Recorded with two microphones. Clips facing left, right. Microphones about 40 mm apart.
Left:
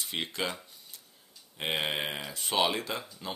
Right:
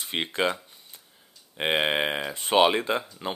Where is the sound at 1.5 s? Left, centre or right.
Right.